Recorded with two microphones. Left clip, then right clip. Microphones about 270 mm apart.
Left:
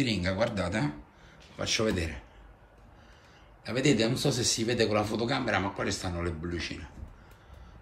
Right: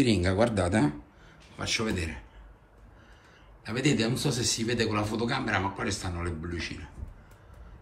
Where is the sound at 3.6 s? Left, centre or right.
Centre.